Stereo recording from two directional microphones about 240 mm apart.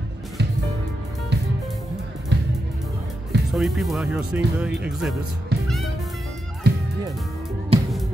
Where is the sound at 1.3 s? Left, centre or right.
Right.